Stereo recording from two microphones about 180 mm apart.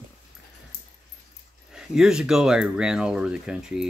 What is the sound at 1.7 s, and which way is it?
Speech, 5° right (ahead or behind).